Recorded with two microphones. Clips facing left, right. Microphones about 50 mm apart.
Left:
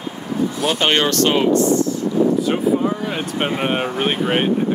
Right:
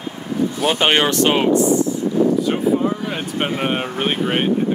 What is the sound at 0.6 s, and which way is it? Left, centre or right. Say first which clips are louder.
Speech: right 2 dB; centre.